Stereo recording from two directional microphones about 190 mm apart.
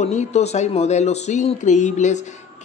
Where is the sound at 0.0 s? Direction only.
35° left (ahead or behind).